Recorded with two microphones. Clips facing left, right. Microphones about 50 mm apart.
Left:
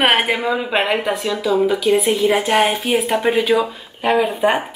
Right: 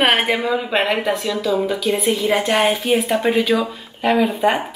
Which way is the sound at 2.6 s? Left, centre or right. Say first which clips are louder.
Even; left.